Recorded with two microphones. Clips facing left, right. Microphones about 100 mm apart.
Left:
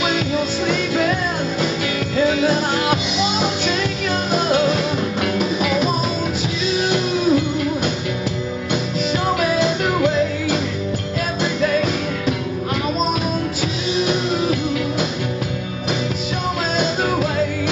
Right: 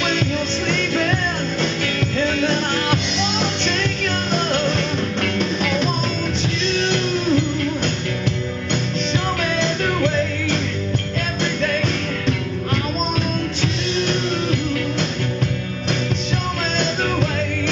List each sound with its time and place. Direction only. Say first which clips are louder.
0.7 s music: left 1 dB; 5° left (ahead or behind)
2.1 s music: left 4 dB; 5° left (ahead or behind)
9.4 s music: left 3 dB; 10° left (ahead or behind)
13.9 s music: left 4 dB; 5° left (ahead or behind)
16.7 s music: left 2 dB; 5° left (ahead or behind)